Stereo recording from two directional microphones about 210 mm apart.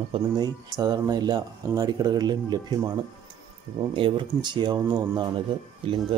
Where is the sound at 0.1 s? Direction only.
20° right (ahead or behind).